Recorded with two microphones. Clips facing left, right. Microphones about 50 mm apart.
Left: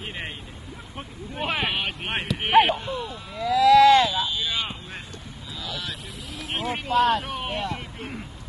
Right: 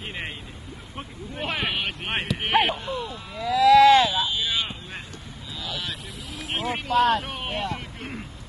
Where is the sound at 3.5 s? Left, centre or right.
Right.